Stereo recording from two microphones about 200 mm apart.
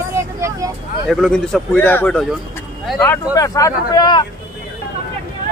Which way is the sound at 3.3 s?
15° left (ahead or behind).